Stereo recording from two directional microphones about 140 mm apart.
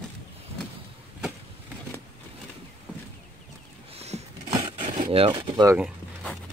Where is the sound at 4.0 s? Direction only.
50° right (ahead or behind).